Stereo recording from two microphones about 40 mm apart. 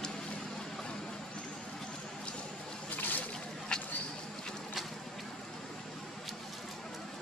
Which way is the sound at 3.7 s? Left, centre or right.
Centre.